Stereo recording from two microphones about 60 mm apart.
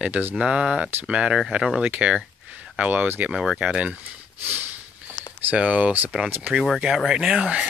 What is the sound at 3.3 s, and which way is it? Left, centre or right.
Speech, centre.